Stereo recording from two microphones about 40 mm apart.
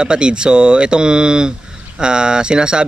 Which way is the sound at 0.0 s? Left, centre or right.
Right.